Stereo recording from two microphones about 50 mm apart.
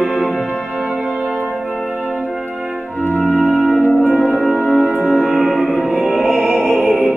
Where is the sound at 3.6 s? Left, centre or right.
Centre.